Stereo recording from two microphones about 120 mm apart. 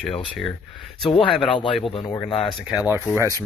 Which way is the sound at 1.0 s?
45° left (ahead or behind).